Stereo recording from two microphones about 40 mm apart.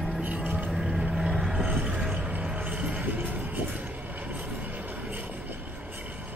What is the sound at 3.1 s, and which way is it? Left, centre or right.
Music, right.